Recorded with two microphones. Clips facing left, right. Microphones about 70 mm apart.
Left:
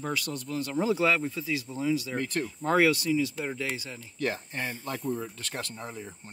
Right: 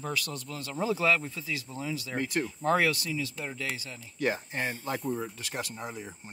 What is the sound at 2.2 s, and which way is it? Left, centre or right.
Speech, centre.